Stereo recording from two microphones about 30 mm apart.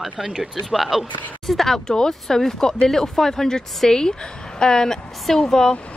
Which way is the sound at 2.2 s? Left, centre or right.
Centre.